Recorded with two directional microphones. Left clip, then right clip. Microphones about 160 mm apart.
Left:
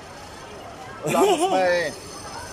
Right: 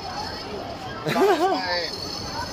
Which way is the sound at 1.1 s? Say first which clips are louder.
Even; 15° left (ahead or behind).